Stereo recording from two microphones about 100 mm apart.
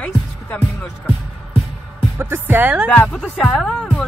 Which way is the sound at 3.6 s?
5° left (ahead or behind).